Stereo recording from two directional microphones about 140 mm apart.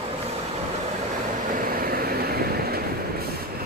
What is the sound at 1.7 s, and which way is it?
Vehicle, 90° right.